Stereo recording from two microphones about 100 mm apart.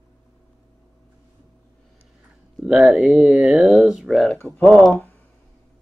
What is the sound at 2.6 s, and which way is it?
Speech, 5° right (ahead or behind).